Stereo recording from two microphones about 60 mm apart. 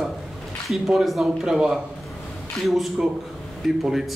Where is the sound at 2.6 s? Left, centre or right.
Centre.